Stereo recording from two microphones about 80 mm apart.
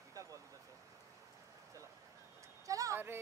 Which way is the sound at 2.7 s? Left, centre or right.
Right.